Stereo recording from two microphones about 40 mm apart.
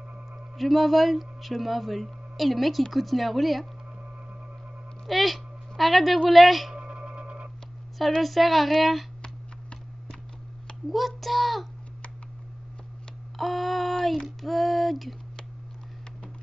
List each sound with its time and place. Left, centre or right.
0.6 s speech: centre
5.0 s speech: centre
6.7 s a sound: right
8.2 s speech: centre
10.9 s child singing: centre
13.4 s a sound: centre
14.2 s female singing: centre